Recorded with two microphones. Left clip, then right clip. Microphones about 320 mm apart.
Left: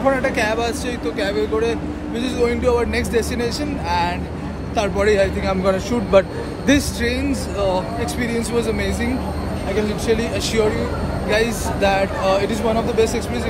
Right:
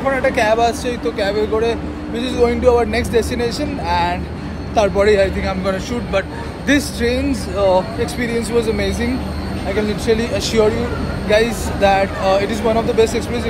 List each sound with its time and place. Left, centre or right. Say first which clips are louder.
0.0 s speech: right 2 dB; centre
5.5 s a man's voice: left 2 dB; centre
7.0 s speech: right 3 dB; centre